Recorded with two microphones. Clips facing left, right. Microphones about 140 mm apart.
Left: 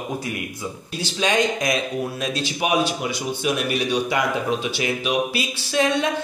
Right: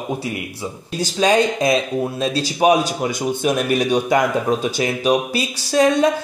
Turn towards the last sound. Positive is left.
turn(degrees=-40)  # may be behind; listen again after turning